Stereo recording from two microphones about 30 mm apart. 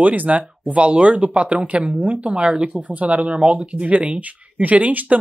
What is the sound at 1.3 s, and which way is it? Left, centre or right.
Speech, right.